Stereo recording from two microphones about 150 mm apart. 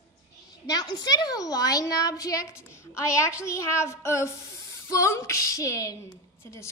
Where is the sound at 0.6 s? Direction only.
25° left (ahead or behind).